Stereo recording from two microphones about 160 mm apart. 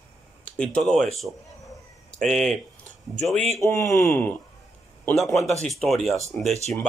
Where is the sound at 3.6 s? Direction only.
20° left (ahead or behind).